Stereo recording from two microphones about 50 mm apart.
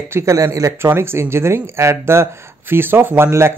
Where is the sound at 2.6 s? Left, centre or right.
Right.